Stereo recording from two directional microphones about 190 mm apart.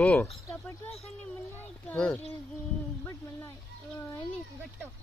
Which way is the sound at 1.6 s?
5° left (ahead or behind).